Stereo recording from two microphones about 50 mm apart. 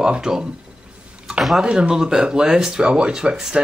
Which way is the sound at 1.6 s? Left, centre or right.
Centre.